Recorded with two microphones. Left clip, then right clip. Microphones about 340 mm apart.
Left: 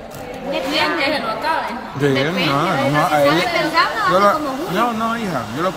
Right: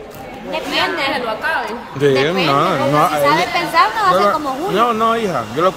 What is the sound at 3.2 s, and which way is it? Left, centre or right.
Speech, centre.